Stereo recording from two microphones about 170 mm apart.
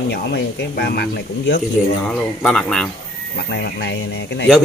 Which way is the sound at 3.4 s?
90° left.